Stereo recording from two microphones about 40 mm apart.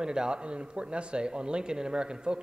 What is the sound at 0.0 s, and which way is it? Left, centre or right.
A man's voice, centre.